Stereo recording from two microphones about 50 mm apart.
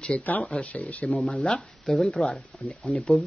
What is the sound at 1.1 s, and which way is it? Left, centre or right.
Speech, centre.